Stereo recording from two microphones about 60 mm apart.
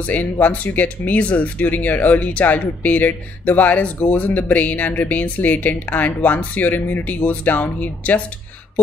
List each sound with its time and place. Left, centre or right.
0.0 s speech: left